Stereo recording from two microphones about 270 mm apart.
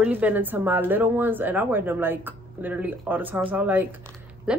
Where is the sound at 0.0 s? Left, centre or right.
Centre.